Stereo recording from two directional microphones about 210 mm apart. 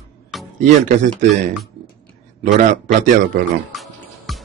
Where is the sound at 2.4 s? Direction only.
35° right (ahead or behind).